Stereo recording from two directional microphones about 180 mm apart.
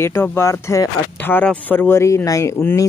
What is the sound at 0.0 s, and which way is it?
Speech, 15° left (ahead or behind).